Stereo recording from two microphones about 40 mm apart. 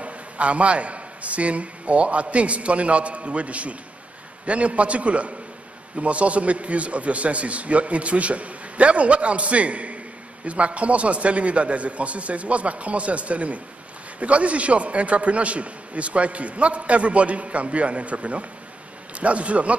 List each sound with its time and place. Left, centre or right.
0.0 s a man's voice: right